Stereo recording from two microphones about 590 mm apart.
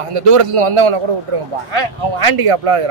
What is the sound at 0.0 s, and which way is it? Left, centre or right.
A man's voice, right.